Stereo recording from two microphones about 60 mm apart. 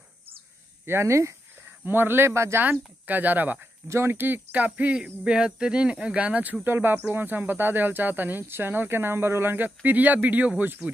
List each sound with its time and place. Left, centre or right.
0.8 s speech: right
1.9 s speech: right
2.3 s speech: right
2.6 s speech: right
3.8 s speech: right
10.8 s speech: centre